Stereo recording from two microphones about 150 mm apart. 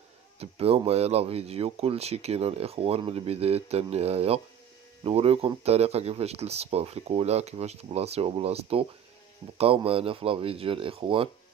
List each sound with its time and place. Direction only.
0.4 s speech: 40° right (ahead or behind)